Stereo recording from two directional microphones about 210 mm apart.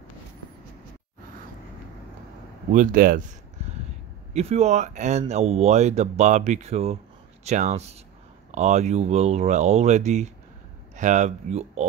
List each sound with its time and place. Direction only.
2.7 s speech: 40° right (ahead or behind)
4.3 s speech: 30° right (ahead or behind)